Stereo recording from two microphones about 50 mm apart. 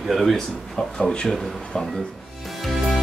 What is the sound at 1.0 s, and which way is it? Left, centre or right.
Speech, centre.